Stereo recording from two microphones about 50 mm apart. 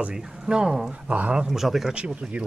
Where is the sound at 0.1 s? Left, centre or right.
Centre.